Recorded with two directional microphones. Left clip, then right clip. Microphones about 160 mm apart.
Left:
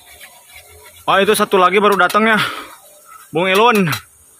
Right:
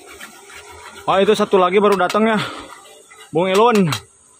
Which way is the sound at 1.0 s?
5° right (ahead or behind).